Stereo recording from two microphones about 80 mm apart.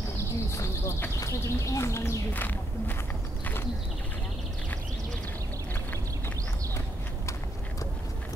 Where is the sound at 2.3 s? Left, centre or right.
Left.